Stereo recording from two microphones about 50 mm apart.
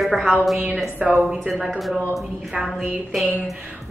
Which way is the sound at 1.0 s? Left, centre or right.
Centre.